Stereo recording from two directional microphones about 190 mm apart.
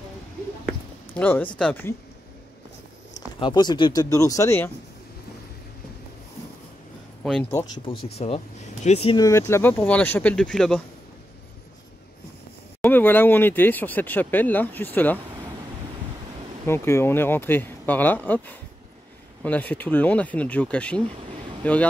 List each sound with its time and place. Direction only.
1.1 s speech: 10° left (ahead or behind)
3.3 s speech: 25° left (ahead or behind)
7.9 s speech: 50° left (ahead or behind)
8.8 s speech: 35° left (ahead or behind)
9.1 s speech: 20° left (ahead or behind); by 10.8 s centre (ahead or behind)
12.8 s speech: 10° left (ahead or behind)
16.6 s speech: 15° left (ahead or behind)